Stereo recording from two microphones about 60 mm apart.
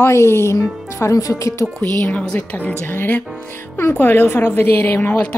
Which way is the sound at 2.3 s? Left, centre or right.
Left.